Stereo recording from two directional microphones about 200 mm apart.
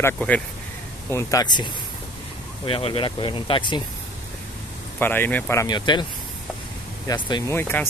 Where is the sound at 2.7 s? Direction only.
25° left (ahead or behind).